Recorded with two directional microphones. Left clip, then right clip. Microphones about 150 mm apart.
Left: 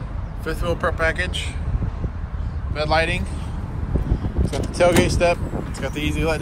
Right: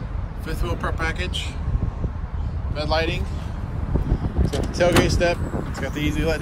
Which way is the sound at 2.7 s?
20° right (ahead or behind).